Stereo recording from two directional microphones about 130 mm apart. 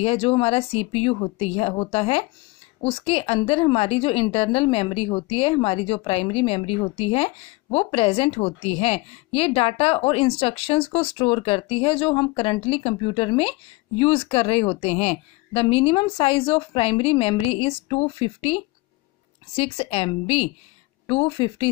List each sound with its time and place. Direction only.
0.0 s a woman's voice: 50° left (ahead or behind)